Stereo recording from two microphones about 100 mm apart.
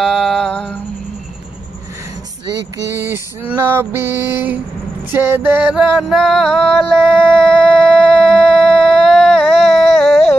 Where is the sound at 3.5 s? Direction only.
20° right (ahead or behind).